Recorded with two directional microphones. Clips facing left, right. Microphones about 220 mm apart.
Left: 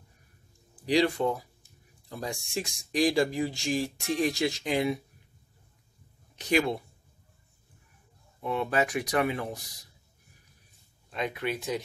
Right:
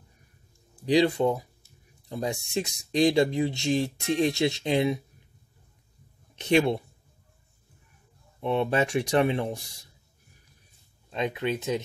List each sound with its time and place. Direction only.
0.8 s speech: 20° right (ahead or behind)
6.3 s speech: 25° right (ahead or behind)
8.4 s speech: 25° right (ahead or behind)
11.1 s speech: 20° right (ahead or behind)